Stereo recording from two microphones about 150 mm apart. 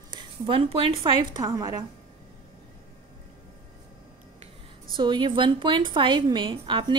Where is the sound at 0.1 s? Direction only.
35° right (ahead or behind).